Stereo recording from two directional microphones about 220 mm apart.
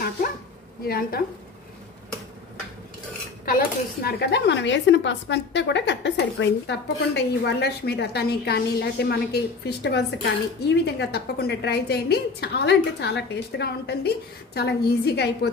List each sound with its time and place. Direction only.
0.8 s a woman's voice: 45° left (ahead or behind)
3.4 s a woman's voice: 40° left (ahead or behind)